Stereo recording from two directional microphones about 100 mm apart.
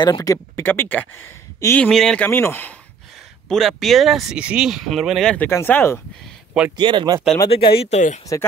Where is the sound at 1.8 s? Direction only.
5° left (ahead or behind).